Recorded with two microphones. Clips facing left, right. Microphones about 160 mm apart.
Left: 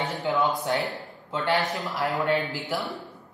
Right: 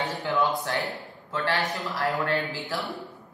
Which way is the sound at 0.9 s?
20° left (ahead or behind).